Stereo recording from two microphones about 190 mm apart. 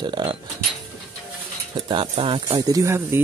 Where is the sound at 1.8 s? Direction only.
25° right (ahead or behind).